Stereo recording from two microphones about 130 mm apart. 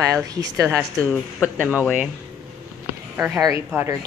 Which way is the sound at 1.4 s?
10° right (ahead or behind).